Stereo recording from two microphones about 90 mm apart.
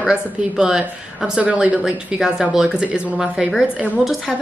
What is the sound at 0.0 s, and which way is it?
A woman's voice, 10° right (ahead or behind).